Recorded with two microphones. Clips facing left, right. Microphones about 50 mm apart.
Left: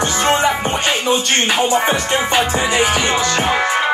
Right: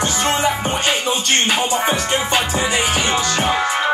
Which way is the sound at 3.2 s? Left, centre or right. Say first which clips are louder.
Left 2 dB; left.